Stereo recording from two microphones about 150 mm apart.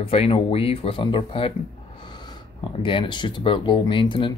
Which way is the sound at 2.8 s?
35° left (ahead or behind).